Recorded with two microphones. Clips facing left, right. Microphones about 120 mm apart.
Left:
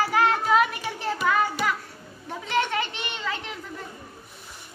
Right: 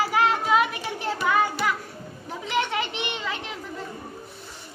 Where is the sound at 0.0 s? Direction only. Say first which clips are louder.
Even; 10° right (ahead or behind).